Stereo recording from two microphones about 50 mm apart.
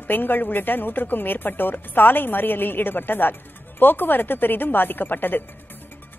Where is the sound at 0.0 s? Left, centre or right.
Left.